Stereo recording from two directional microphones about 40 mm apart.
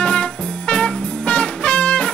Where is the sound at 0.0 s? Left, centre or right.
Left.